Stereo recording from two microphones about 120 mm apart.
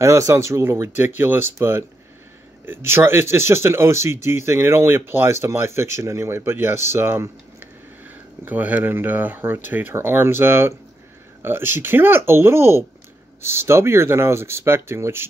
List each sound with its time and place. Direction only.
0.0 s speech: 25° right (ahead or behind)
8.5 s speech: 15° right (ahead or behind)